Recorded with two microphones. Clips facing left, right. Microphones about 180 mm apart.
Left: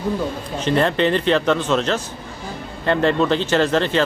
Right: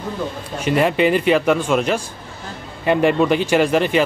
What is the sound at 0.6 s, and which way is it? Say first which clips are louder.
Speech: right 1 dB; 10° right (ahead or behind).